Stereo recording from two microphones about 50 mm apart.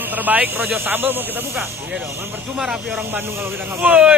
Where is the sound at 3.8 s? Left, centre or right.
Centre.